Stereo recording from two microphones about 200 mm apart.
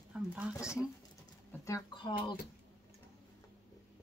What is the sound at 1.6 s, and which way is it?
Speech, 20° left (ahead or behind).